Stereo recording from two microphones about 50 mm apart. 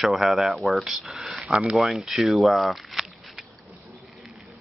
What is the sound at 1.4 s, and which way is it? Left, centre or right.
Speech, centre.